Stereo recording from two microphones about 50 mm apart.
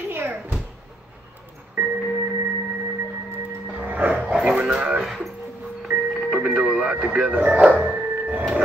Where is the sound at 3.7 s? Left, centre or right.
Right.